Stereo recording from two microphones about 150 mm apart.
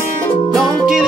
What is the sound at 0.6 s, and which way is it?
Music, 5° right (ahead or behind).